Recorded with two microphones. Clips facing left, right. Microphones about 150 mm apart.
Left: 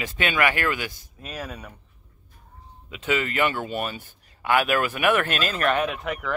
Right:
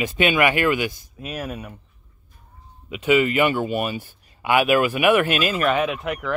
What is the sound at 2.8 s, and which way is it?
Speech, 15° right (ahead or behind).